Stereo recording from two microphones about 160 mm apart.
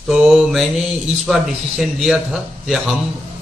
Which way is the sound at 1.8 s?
Centre (ahead or behind).